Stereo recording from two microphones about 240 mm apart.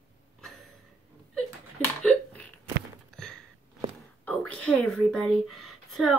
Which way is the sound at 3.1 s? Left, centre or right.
Centre.